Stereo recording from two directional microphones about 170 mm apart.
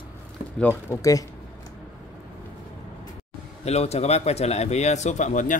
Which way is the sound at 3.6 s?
40° left (ahead or behind).